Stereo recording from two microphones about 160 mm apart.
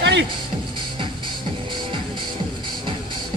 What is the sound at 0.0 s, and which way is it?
Music, 90° right.